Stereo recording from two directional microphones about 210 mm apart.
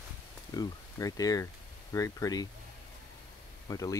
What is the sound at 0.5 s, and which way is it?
Speech, 15° left (ahead or behind).